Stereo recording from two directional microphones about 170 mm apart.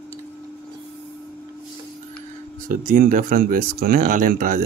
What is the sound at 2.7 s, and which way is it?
Speech, 50° right (ahead or behind).